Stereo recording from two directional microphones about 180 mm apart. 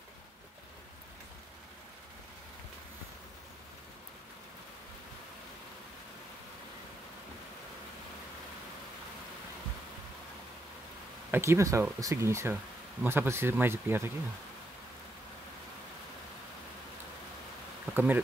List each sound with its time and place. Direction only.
11.3 s speech: 15° right (ahead or behind)
17.9 s speech: 10° right (ahead or behind)